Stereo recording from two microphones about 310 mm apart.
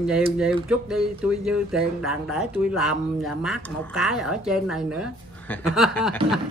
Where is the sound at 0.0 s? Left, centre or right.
Centre.